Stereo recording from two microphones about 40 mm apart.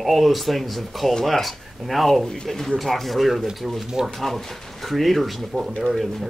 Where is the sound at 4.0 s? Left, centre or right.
Centre.